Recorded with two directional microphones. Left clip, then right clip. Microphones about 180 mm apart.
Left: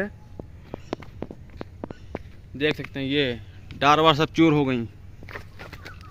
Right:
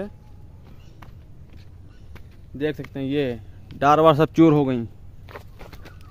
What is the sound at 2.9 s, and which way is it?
A man's voice, 50° right (ahead or behind).